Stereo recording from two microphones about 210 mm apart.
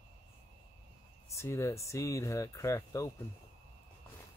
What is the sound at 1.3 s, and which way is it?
Speech, 15° left (ahead or behind).